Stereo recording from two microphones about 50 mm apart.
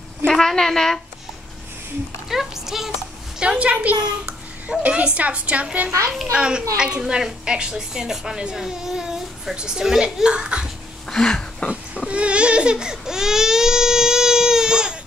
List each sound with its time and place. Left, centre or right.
0.3 s a woman's voice: centre
2.2 s a woman's voice: centre
3.3 s a child's voice: right
11.1 s a sound: centre
12.1 s baby cry: right